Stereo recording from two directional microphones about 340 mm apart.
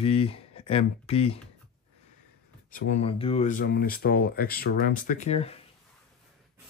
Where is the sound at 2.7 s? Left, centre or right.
Left.